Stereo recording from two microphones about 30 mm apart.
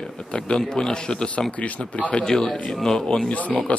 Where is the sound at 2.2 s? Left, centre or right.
Left.